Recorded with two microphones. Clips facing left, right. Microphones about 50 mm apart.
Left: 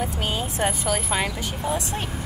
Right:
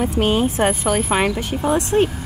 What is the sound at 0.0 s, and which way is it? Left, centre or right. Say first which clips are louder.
Speech: right 9 dB; right.